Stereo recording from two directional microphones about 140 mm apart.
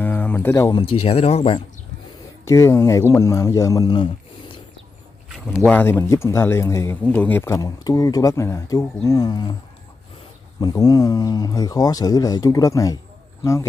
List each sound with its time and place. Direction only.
0.0 s a sound: 15° left (ahead or behind)
0.7 s speech: 35° left (ahead or behind)
1.1 s speech: 45° left (ahead or behind)
2.4 s speech: 20° left (ahead or behind)
5.7 s speech: 15° left (ahead or behind)
10.6 s speech: 25° left (ahead or behind)